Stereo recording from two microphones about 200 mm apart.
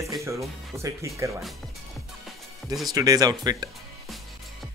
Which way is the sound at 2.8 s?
20° right (ahead or behind).